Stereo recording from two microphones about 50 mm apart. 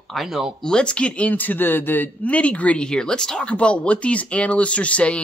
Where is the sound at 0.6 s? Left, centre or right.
Centre; by 2.1 s left.